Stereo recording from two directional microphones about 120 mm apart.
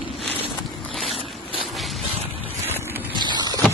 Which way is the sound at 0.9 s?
Centre (ahead or behind).